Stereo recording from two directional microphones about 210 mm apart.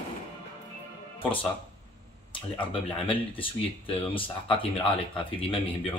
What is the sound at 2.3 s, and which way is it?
Speech, 25° left (ahead or behind).